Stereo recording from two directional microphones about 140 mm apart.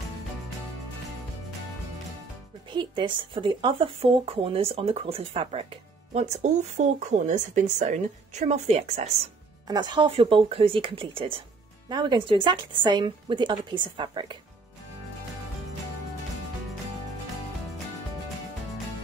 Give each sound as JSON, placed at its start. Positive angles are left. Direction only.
{"t": 2.7, "sound": "speech", "side_deg": -35}
{"t": 9.7, "sound": "speech", "side_deg": -35}